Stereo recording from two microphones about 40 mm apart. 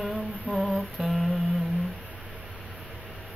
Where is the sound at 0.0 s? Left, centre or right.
Centre.